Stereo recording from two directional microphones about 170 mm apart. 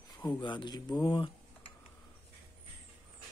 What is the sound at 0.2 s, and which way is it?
Speech, 25° left (ahead or behind).